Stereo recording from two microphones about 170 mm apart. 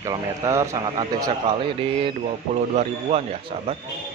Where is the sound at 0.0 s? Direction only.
20° right (ahead or behind); by 3.7 s 35° right (ahead or behind).